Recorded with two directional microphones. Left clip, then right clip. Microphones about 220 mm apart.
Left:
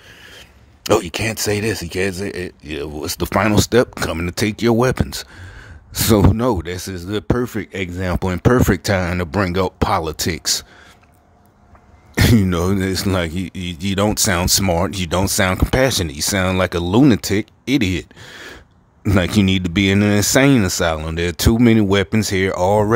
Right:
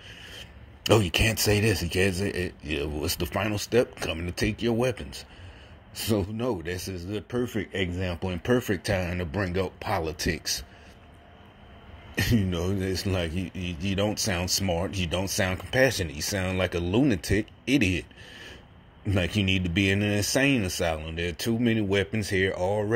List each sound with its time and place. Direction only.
0.1 s speech: 35° left (ahead or behind)
6.3 s speech: 35° left (ahead or behind)
12.4 s speech: 35° left (ahead or behind)
19.1 s speech: 30° left (ahead or behind)